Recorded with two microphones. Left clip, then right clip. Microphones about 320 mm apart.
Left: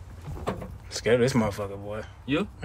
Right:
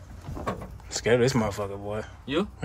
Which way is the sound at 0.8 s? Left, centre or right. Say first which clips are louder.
Even; centre.